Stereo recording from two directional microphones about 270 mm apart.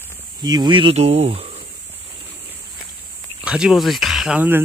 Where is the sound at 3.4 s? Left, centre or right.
Centre.